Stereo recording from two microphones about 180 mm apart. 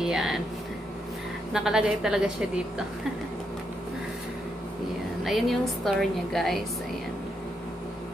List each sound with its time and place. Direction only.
0.0 s a sound: 5° right (ahead or behind)
1.5 s a woman's voice: 5° right (ahead or behind)
5.2 s a woman's voice: centre (ahead or behind)